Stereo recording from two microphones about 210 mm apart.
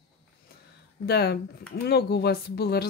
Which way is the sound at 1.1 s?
50° left (ahead or behind).